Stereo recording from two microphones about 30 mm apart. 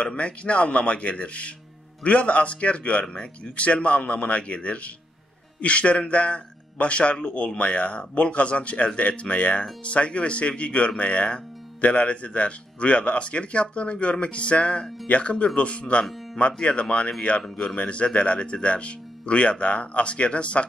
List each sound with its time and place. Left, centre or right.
0.0 s a man's voice: left